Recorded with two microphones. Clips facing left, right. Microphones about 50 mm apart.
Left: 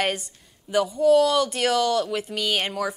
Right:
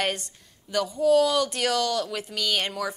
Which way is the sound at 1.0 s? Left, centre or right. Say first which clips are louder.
Left 2 dB; centre.